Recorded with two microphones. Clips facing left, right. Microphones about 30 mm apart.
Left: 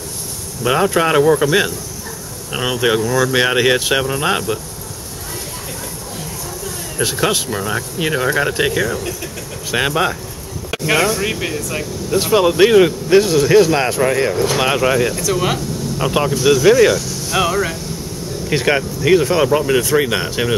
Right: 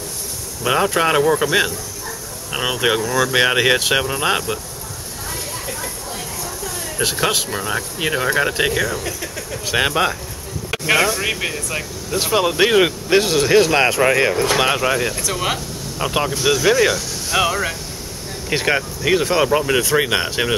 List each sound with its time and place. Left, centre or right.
0.7 s speech: centre
7.0 s speech: centre
12.8 s speech: centre
14.6 s speech: centre